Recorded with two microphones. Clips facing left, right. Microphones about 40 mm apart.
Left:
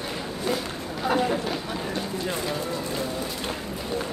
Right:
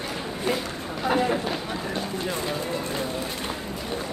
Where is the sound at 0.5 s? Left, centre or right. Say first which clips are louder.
Even; centre.